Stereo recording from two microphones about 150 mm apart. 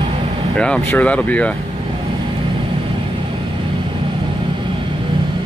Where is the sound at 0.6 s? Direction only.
5° left (ahead or behind).